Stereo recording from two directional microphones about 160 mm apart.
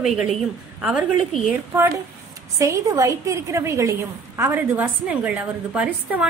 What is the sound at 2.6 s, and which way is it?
A woman's voice, 20° right (ahead or behind).